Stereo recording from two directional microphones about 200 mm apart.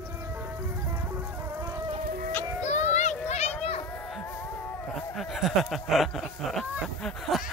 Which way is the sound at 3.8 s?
5° left (ahead or behind).